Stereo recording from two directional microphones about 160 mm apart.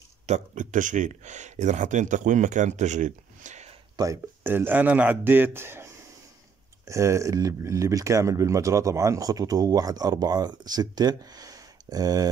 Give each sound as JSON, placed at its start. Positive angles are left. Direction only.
{"t": 0.3, "sound": "speech", "side_deg": -50}
{"t": 3.9, "sound": "speech", "side_deg": -20}
{"t": 6.9, "sound": "speech", "side_deg": -20}